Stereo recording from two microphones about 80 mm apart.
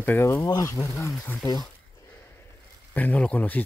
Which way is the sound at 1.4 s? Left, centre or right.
Left.